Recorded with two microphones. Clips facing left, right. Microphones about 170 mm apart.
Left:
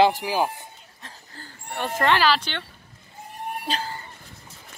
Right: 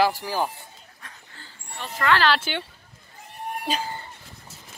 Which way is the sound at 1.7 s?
55° left (ahead or behind).